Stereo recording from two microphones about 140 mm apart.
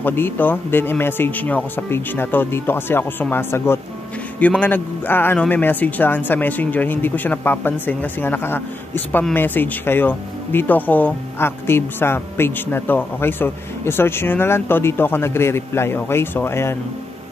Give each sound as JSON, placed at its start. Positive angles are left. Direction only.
{"t": 0.0, "sound": "speech", "side_deg": 15}